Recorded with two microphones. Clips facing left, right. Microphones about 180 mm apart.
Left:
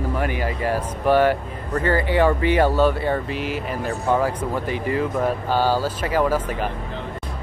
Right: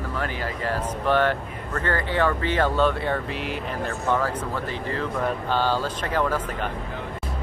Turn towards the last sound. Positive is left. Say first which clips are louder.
# left 4 dB
turn(degrees=10)  # may be behind; listen again after turning